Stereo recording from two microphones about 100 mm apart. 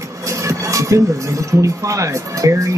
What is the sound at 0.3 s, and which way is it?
Speech, 30° right (ahead or behind).